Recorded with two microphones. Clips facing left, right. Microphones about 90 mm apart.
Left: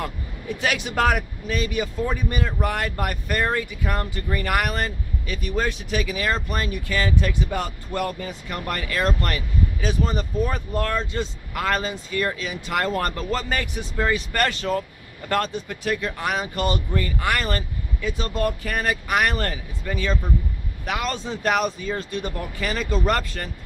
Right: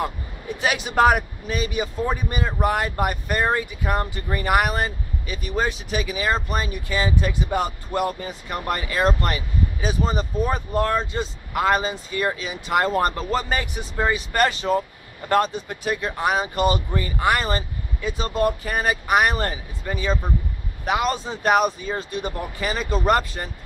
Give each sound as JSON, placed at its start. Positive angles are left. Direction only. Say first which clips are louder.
{"t": 0.0, "sound": "speech", "louder": "right 3 dB", "side_deg": -15}